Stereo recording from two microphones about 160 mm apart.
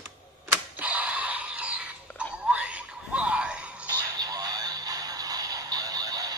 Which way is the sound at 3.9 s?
25° right (ahead or behind).